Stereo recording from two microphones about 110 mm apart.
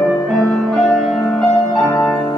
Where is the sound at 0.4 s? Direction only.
5° left (ahead or behind).